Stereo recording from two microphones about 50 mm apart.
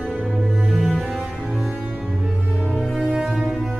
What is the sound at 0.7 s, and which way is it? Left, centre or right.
Music, centre.